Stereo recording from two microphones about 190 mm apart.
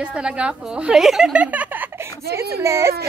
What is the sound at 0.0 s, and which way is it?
A woman's voice, 5° right (ahead or behind).